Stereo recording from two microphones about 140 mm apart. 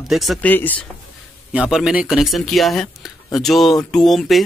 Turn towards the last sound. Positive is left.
turn(degrees=0)  # may be behind; listen again after turning